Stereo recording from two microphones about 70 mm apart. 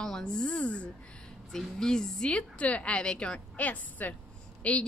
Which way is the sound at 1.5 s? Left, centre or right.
Centre.